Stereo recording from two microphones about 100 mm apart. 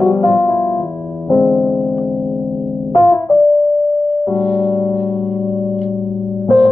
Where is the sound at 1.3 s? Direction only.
Centre (ahead or behind).